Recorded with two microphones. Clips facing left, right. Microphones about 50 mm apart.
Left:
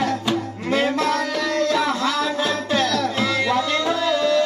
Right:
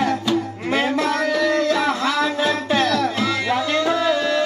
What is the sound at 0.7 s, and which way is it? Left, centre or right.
Music, right.